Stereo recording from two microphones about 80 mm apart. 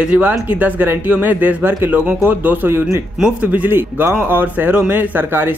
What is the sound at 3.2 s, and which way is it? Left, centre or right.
Speech, centre.